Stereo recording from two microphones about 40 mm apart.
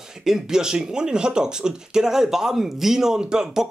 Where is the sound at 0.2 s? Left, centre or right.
Centre.